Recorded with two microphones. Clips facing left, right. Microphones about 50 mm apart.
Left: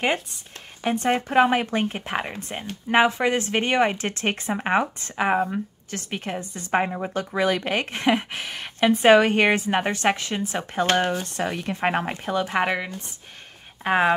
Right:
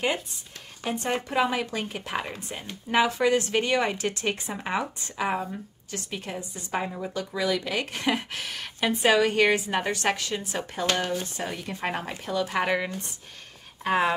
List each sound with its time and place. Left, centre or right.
1.0 s a woman's voice: left
11.7 s a woman's voice: left
12.6 s speech: centre
13.8 s speech: left